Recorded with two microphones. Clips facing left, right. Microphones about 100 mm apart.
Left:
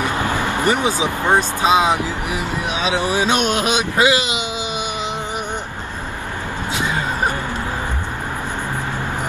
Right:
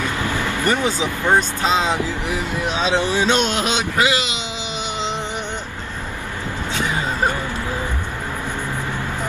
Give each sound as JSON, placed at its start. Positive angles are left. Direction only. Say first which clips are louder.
{"t": 0.0, "sound": "speech", "louder": "left 3 dB", "side_deg": 20}
{"t": 6.7, "sound": "vehicle", "louder": "left 1 dB", "side_deg": 15}